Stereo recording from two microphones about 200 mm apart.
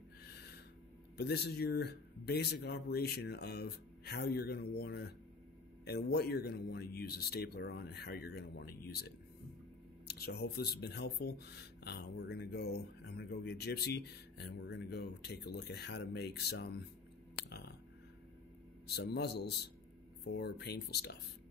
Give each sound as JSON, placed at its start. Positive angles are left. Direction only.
{"t": 0.2, "sound": "gasp", "side_deg": 55}
{"t": 1.1, "sound": "speech", "side_deg": 55}
{"t": 10.0, "sound": "speech", "side_deg": 50}
{"t": 18.9, "sound": "speech", "side_deg": 55}